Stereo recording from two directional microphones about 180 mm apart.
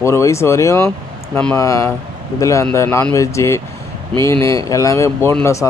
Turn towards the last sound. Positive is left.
turn(degrees=15)  # may be behind; listen again after turning